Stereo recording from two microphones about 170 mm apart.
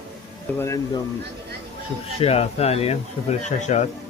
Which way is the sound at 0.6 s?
15° left (ahead or behind).